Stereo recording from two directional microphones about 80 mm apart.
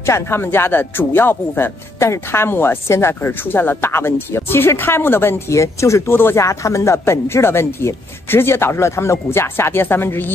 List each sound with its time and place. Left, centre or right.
0.0 s speech: left